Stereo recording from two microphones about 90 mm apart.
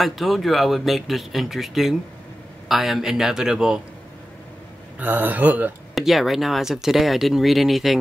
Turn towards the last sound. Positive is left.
turn(degrees=0)  # may be behind; listen again after turning